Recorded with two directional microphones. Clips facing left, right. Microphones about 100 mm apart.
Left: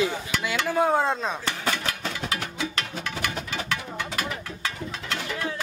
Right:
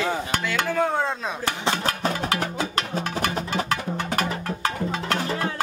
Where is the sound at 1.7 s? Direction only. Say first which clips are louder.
Right 6 dB; 40° right (ahead or behind).